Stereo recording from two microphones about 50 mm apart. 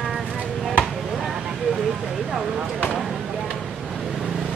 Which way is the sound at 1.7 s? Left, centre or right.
Centre.